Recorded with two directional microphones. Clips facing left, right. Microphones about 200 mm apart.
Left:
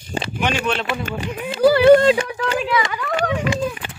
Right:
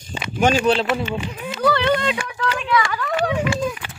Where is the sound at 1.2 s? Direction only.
30° left (ahead or behind).